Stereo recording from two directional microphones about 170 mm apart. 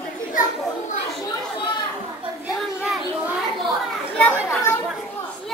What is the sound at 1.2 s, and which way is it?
Speech, 25° left (ahead or behind).